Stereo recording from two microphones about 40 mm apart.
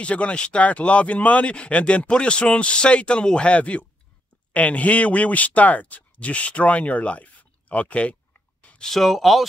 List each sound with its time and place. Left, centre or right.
0.0 s speech: left
2.0 s speech: left
8.8 s speech: centre